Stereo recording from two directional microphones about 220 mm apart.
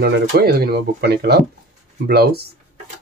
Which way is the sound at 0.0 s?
45° right (ahead or behind).